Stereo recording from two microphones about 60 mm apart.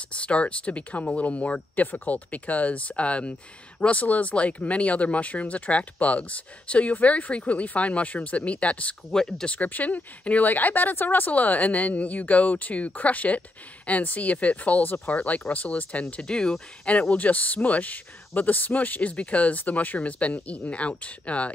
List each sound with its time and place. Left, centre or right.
0.1 s speech: centre
9.1 s speech: centre
9.6 s speech: left